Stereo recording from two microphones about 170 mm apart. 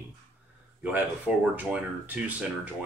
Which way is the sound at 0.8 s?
10° right (ahead or behind).